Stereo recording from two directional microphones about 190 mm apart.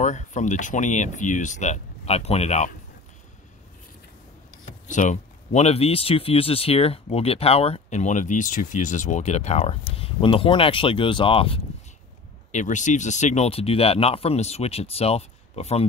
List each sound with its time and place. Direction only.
0.0 s speech: 40° left (ahead or behind)
4.8 s speech: 40° left (ahead or behind)
12.4 s speech: 40° left (ahead or behind)